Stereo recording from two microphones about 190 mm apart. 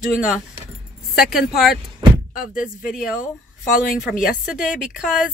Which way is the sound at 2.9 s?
5° right (ahead or behind).